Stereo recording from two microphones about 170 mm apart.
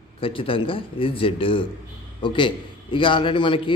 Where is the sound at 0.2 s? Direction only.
30° left (ahead or behind).